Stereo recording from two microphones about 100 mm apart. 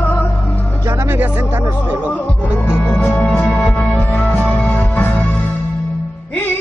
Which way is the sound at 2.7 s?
20° left (ahead or behind).